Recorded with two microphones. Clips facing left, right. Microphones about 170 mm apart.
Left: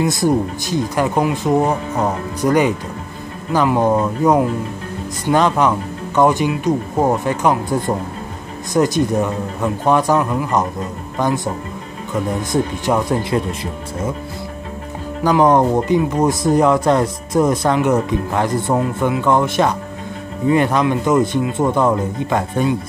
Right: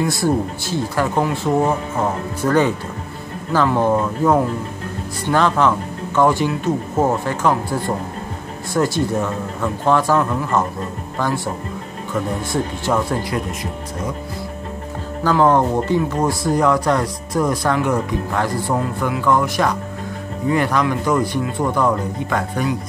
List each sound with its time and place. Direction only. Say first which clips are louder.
0.0 s speech: left 2 dB; 20° left (ahead or behind)
15.2 s speech: left 2 dB; 15° left (ahead or behind)